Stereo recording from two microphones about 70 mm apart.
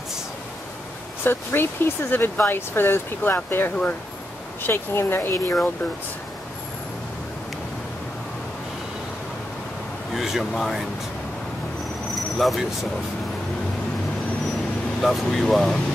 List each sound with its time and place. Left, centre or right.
1.2 s speech: left
10.1 s speech: centre
12.1 s a sound: centre
15.0 s speech: centre